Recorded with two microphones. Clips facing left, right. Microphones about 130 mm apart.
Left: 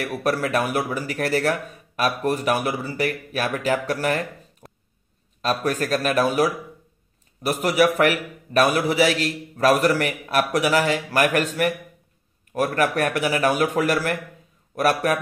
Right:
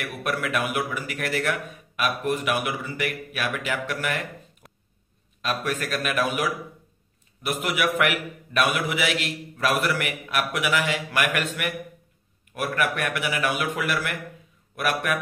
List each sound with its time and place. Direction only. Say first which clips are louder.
0.0 s speech: left 5 dB; 35° left (ahead or behind)
7.6 s speech: left 6 dB; 35° left (ahead or behind)